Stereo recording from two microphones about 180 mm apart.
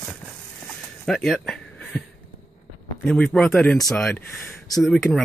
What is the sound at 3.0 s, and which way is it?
A man's voice, 5° left (ahead or behind).